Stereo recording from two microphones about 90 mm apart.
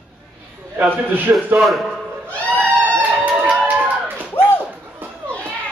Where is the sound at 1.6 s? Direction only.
Centre (ahead or behind).